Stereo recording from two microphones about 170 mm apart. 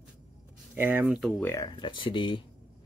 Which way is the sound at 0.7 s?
10° right (ahead or behind).